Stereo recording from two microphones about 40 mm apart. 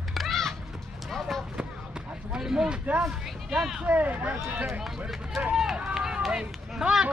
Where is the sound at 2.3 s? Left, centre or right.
Centre.